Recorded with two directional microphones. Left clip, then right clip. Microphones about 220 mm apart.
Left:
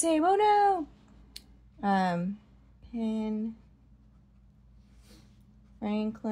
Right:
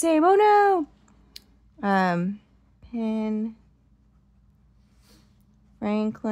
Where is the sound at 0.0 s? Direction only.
30° right (ahead or behind).